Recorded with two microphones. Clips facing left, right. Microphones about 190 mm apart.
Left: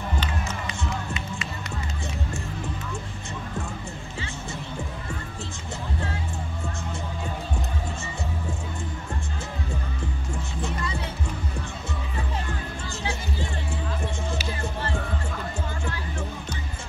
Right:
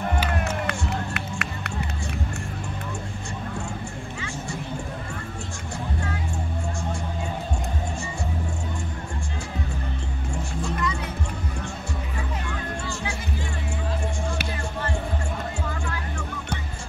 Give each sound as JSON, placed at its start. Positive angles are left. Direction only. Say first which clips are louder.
{"t": 0.3, "sound": "run", "louder": "right 5 dB", "side_deg": -60}
{"t": 10.6, "sound": "music", "louder": "right 3 dB", "side_deg": 30}
{"t": 12.8, "sound": "music", "louder": "right 1 dB", "side_deg": 30}